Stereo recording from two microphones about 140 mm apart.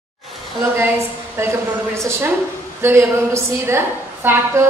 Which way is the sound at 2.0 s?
20° right (ahead or behind).